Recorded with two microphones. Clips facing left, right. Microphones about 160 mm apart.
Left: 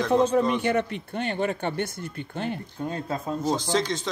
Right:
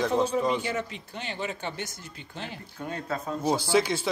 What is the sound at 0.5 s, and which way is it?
Speech, 60° left (ahead or behind).